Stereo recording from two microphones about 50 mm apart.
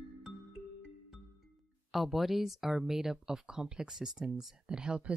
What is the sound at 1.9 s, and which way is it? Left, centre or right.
Speech, centre.